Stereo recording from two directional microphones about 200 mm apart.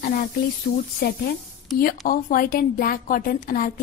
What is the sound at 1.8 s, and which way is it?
A woman's voice, 45° left (ahead or behind).